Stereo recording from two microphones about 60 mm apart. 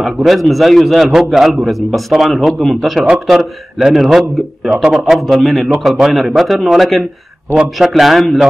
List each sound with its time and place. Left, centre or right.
0.0 s a man's voice: centre